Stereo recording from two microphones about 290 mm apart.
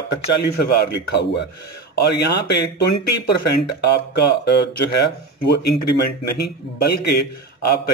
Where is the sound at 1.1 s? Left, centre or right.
Left.